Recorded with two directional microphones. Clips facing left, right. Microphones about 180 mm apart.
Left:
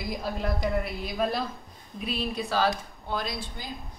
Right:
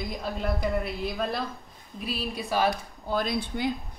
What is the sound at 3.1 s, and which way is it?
Speech, 55° right (ahead or behind).